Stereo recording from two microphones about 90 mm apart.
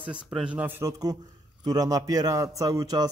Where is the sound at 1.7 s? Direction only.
40° right (ahead or behind).